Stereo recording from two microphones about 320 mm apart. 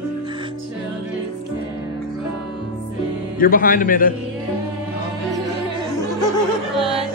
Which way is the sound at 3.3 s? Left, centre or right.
Left.